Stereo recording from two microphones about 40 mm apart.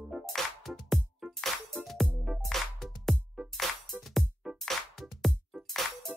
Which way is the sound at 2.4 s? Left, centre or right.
Centre.